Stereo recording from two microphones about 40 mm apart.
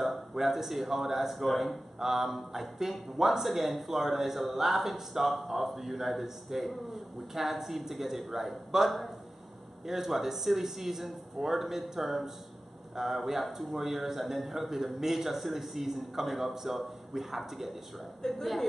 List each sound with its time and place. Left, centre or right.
0.0 s a man's voice: centre
18.2 s a man's voice: centre